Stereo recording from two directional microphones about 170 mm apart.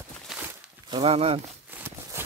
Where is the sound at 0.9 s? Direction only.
35° right (ahead or behind).